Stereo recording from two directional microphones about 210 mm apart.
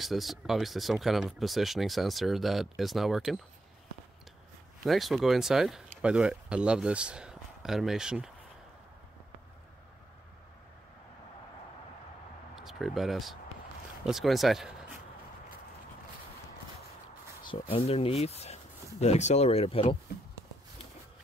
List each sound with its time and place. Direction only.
0.0 s speech: centre (ahead or behind)
4.8 s speech: centre (ahead or behind)
12.5 s speech: centre (ahead or behind)
17.5 s speech: 25° left (ahead or behind)